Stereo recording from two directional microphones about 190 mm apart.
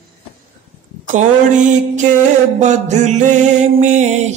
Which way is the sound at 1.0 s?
40° right (ahead or behind).